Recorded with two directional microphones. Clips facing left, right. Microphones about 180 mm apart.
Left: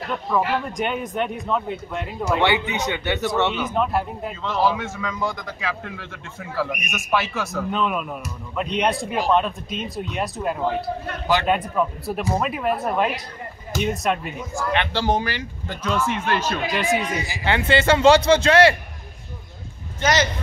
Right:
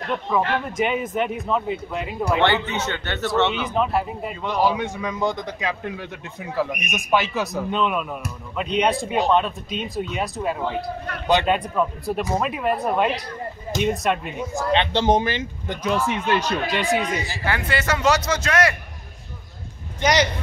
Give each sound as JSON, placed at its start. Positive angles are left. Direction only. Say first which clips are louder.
{"t": 0.0, "sound": "a man's voice", "louder": "even", "side_deg": 0}
{"t": 2.4, "sound": "a man's voice", "louder": "even", "side_deg": 15}
{"t": 3.6, "sound": "a man's voice", "louder": "even", "side_deg": 0}
{"t": 4.5, "sound": "a man's voice", "louder": "right 1 dB", "side_deg": -15}
{"t": 7.7, "sound": "a man's voice", "louder": "right 1 dB", "side_deg": 0}
{"t": 14.5, "sound": "a man's voice", "louder": "right 3 dB", "side_deg": -20}
{"t": 16.7, "sound": "a man's voice", "louder": "even", "side_deg": 0}
{"t": 17.3, "sound": "a man's voice", "louder": "left 4 dB", "side_deg": 25}
{"t": 20.0, "sound": "speech", "louder": "right 1 dB", "side_deg": -15}